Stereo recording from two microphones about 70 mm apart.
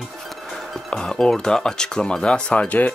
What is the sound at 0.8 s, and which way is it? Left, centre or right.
Speech, centre.